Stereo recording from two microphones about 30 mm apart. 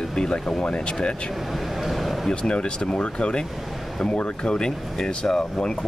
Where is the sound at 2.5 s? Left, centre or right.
Left.